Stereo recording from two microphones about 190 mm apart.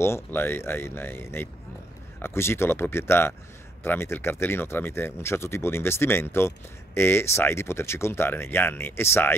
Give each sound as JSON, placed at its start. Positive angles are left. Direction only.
{"t": 0.0, "sound": "speech", "side_deg": 10}